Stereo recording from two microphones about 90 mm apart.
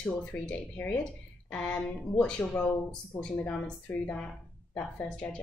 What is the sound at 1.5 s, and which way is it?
A woman's voice, 10° left (ahead or behind).